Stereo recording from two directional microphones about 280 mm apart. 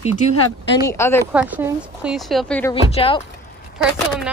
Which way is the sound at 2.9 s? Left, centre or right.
Centre.